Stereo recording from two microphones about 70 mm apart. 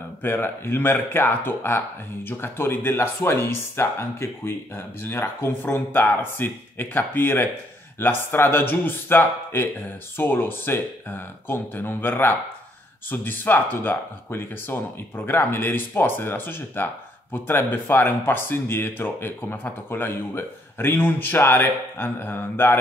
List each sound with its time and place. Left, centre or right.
0.2 s speech: left